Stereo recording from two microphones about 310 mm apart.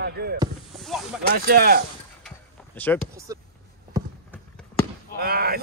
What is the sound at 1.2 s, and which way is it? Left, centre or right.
Speech, right.